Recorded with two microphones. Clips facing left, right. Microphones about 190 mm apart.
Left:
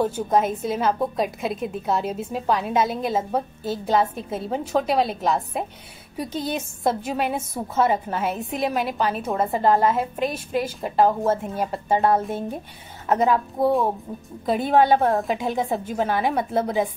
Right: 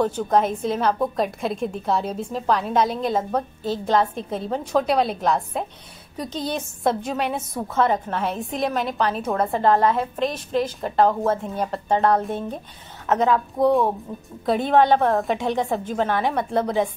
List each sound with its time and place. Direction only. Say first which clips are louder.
0.0 s a woman's voice: right 1 dB; 5° left (ahead or behind)